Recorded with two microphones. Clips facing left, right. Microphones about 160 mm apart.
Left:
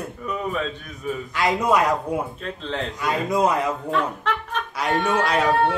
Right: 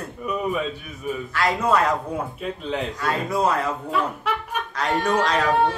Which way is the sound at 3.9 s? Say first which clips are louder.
Left 1 dB; 10° right (ahead or behind).